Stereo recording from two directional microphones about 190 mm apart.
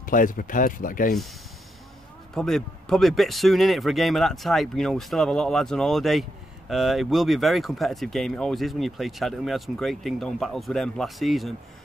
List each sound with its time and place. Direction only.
0.0 s speech: 45° left (ahead or behind)
2.3 s speech: centre (ahead or behind)